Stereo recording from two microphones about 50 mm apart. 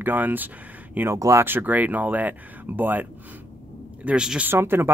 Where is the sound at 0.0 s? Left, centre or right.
Right.